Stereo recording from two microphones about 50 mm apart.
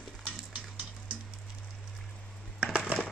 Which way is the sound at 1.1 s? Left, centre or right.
Right.